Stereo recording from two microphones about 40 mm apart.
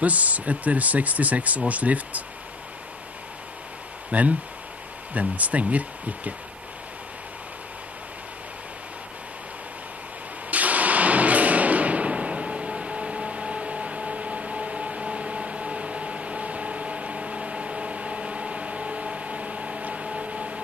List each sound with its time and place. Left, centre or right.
0.0 s speech: right
4.1 s speech: right
10.5 s a sound: right